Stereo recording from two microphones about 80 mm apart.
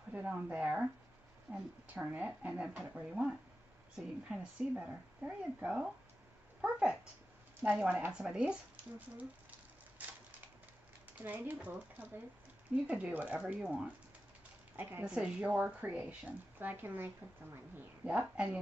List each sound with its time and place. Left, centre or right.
0.1 s speech: centre
11.1 s speech: right
15.0 s speech: centre